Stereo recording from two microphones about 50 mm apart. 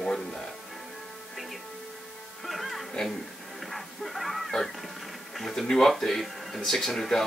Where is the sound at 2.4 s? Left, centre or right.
Centre.